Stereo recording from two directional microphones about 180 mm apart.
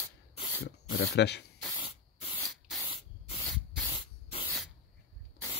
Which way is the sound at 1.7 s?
30° left (ahead or behind).